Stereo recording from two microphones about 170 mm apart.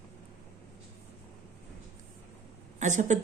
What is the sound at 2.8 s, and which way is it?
Speech, 45° right (ahead or behind).